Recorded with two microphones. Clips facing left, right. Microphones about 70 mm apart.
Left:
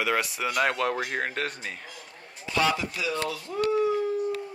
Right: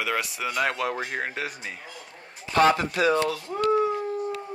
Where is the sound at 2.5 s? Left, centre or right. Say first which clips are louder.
Right 6 dB; right.